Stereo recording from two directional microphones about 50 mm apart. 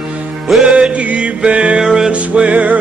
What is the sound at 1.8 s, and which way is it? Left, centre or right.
Music, centre.